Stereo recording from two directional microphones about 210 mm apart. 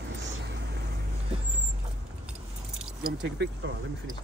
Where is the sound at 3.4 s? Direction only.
60° right (ahead or behind).